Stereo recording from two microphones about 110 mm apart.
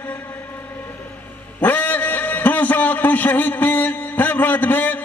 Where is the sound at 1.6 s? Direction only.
15° left (ahead or behind).